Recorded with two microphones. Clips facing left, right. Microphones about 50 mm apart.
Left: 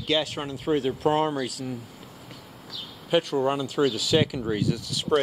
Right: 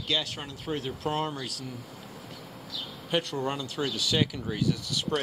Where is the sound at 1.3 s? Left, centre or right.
Centre.